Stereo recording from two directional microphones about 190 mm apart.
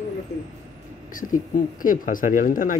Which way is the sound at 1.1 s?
45° left (ahead or behind).